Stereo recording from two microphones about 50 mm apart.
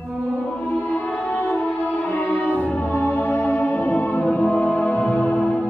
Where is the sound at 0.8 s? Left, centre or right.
Left.